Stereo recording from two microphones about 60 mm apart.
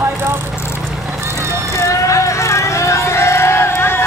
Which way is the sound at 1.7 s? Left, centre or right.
Left.